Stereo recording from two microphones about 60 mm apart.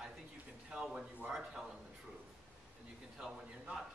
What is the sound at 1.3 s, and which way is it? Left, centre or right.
Speech, centre.